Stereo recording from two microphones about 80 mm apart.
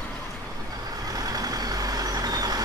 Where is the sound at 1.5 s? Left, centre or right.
Right.